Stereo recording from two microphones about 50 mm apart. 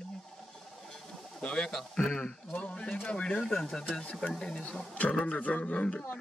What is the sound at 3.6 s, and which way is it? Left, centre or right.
Speech, centre.